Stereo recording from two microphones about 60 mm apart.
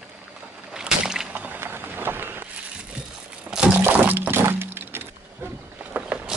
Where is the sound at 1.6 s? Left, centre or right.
Right.